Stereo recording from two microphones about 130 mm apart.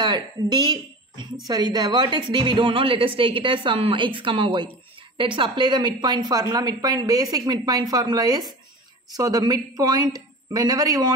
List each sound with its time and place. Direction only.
0.0 s a woman's voice: 35° right (ahead or behind)